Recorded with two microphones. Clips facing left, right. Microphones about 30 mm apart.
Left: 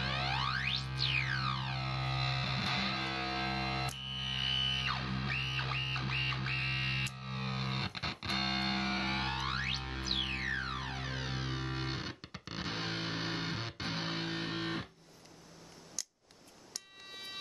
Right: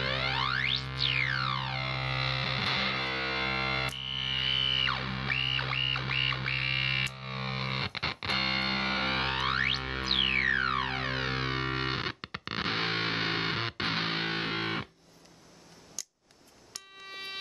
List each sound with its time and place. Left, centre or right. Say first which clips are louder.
0.0 s music: right 5 dB; right
4.3 s music: right 5 dB; right
17.1 s siren: right 6 dB; right